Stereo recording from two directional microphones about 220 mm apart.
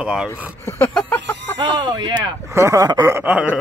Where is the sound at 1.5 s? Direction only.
20° right (ahead or behind).